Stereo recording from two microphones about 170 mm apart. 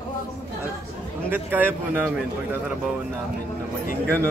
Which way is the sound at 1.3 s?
10° right (ahead or behind).